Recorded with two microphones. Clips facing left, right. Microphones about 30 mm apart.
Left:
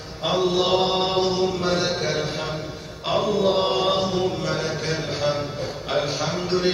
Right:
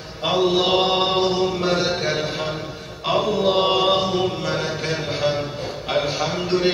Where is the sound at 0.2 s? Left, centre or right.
Centre.